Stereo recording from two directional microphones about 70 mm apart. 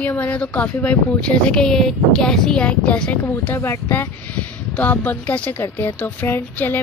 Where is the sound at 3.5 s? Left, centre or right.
Left.